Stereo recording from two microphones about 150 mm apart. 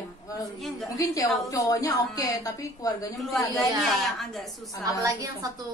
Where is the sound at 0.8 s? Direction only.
25° left (ahead or behind).